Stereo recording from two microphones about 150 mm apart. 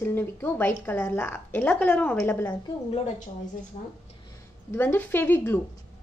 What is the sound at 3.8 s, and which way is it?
Speech, 45° left (ahead or behind).